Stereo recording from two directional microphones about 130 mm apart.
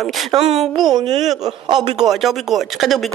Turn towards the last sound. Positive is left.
turn(degrees=0)  # may be behind; listen again after turning